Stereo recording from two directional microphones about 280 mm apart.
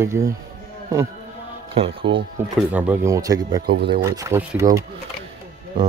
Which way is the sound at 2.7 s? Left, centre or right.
Centre.